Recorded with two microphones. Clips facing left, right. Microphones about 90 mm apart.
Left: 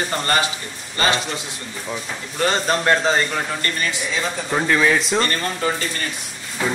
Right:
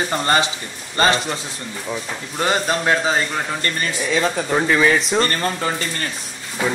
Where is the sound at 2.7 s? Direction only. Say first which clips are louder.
Left 1 dB; 5° right (ahead or behind).